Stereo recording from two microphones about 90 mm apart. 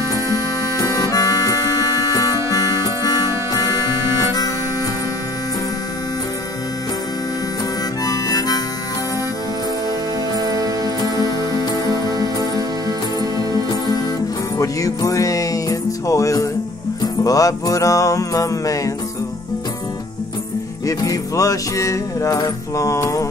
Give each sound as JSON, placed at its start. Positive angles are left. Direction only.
{"t": 0.7, "sound": "music", "side_deg": 45}
{"t": 8.0, "sound": "harmonica", "side_deg": 45}
{"t": 10.3, "sound": "music", "side_deg": -45}
{"t": 11.9, "sound": "music", "side_deg": -45}
{"t": 14.6, "sound": "music", "side_deg": 40}
{"t": 20.8, "sound": "music", "side_deg": 40}